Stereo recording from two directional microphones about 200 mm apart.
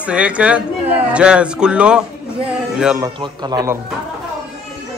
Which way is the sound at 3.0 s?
20° right (ahead or behind).